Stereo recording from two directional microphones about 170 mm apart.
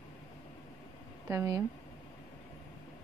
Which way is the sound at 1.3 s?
15° right (ahead or behind).